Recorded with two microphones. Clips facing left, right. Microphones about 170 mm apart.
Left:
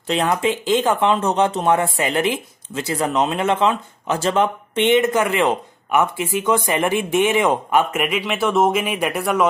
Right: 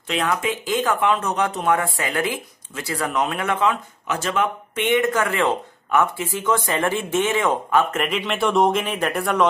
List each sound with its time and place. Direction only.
0.0 s speech: 30° left (ahead or behind); by 9.5 s 10° left (ahead or behind)